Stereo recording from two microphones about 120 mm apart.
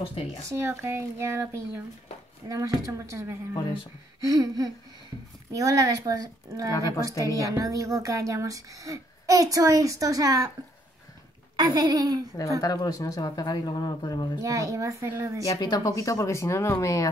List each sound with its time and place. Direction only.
0.5 s speech: 20° right (ahead or behind)
6.7 s speech: 30° left (ahead or behind)
7.5 s speech: 25° right (ahead or behind)
11.5 s a woman's voice: 35° right (ahead or behind)
12.5 s speech: 30° left (ahead or behind)
14.4 s speech: 30° right (ahead or behind)
15.4 s speech: 30° left (ahead or behind)